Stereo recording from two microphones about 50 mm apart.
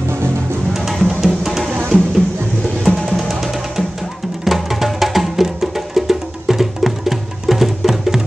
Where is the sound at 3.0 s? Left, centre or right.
Centre.